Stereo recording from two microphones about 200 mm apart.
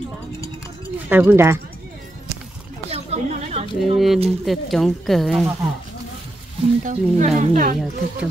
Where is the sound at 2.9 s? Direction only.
30° right (ahead or behind).